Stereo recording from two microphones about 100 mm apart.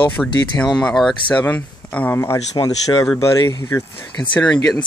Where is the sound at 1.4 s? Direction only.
15° left (ahead or behind).